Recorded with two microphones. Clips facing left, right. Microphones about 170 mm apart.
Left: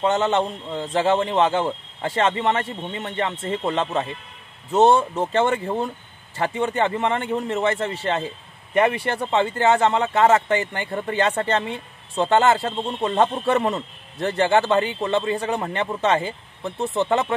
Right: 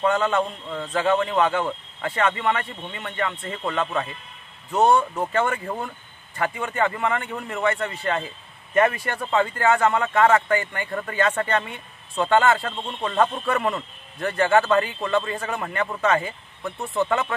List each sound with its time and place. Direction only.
0.0 s speech: 25° left (ahead or behind)